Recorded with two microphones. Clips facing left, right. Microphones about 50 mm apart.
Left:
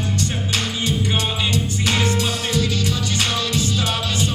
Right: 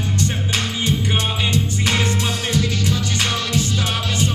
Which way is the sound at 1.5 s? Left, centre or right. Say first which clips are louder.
Right 1 dB; right.